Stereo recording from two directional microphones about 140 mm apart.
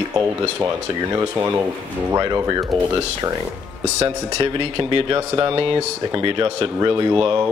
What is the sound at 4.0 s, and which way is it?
Speech, 40° right (ahead or behind).